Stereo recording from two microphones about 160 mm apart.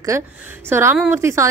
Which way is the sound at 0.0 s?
15° right (ahead or behind).